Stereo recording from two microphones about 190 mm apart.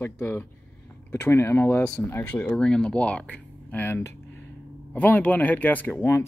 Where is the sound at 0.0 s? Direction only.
10° left (ahead or behind).